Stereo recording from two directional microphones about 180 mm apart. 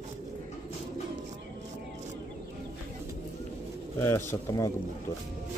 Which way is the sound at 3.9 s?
15° left (ahead or behind).